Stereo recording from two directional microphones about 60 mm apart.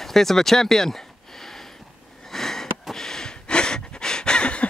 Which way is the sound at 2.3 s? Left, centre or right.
Centre.